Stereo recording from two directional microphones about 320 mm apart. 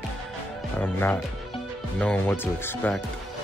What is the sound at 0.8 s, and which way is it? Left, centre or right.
Speech, centre.